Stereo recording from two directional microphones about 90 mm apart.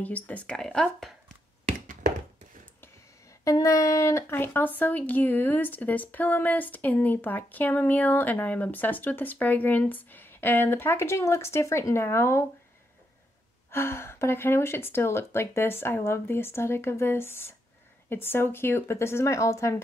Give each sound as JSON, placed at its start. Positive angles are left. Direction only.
{"t": 0.0, "sound": "speech", "side_deg": 15}
{"t": 3.4, "sound": "a woman's voice", "side_deg": 40}
{"t": 13.7, "sound": "a woman's voice", "side_deg": 30}